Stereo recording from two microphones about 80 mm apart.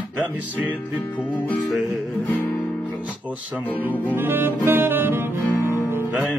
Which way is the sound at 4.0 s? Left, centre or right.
Right.